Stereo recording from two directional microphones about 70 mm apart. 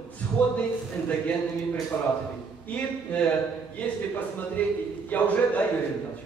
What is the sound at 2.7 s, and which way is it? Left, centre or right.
Speech, centre.